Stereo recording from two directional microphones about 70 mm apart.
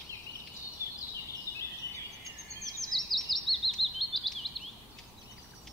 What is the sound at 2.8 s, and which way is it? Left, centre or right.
Bird vocalization, centre.